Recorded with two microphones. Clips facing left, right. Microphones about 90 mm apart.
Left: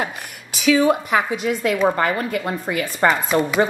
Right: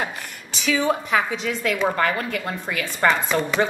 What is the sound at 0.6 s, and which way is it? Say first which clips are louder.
A woman's voice: left 6 dB; 5° left (ahead or behind).